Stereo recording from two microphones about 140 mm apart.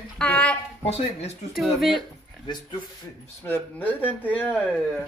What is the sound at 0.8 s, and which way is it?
Speech, 50° left (ahead or behind).